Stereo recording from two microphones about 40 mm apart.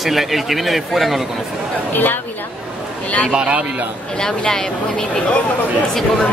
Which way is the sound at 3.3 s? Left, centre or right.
Right.